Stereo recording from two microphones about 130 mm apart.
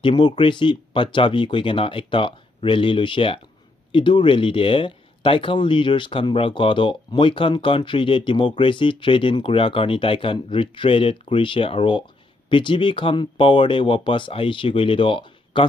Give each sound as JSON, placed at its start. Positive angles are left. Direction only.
{"t": 0.0, "sound": "speech", "side_deg": 40}